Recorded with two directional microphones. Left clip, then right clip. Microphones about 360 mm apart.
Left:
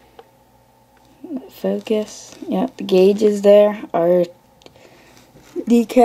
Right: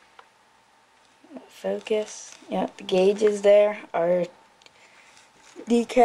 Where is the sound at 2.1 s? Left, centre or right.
Centre.